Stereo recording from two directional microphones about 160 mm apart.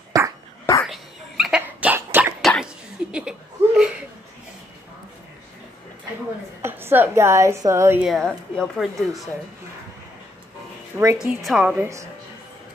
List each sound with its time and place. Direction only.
0.1 s dog: 20° right (ahead or behind)
0.8 s cough: centre (ahead or behind)
2.4 s cough: centre (ahead or behind)
6.6 s a woman's voice: 15° right (ahead or behind)
8.0 s speech: centre (ahead or behind)
10.9 s a woman's voice: 10° right (ahead or behind)